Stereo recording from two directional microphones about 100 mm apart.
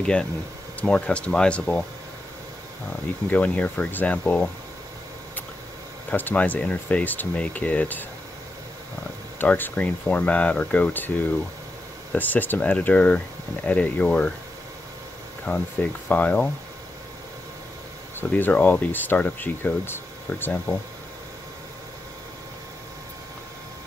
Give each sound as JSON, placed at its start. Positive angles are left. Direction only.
{"t": 0.0, "sound": "speech", "side_deg": 10}
{"t": 3.3, "sound": "speech", "side_deg": 15}
{"t": 6.0, "sound": "speech", "side_deg": 15}
{"t": 9.4, "sound": "speech", "side_deg": 15}
{"t": 15.5, "sound": "speech", "side_deg": 25}
{"t": 18.3, "sound": "speech", "side_deg": 15}